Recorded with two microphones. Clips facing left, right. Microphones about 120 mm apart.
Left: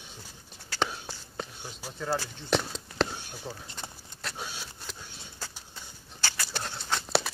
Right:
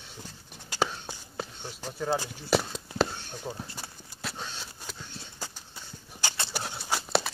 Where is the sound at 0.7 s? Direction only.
15° right (ahead or behind).